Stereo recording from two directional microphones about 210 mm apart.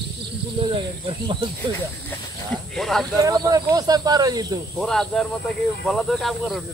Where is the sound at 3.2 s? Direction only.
15° right (ahead or behind).